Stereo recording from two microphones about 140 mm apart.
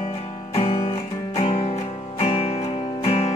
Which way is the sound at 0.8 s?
45° left (ahead or behind).